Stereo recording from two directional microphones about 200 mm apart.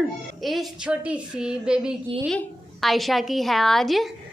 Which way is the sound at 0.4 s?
Centre (ahead or behind).